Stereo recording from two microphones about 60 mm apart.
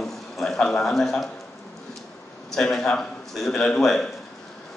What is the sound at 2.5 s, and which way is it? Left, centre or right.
A man's voice, centre.